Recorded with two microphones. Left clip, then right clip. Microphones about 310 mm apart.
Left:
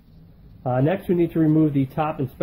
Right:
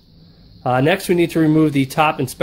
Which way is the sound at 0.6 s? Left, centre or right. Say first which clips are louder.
Right 6 dB; centre.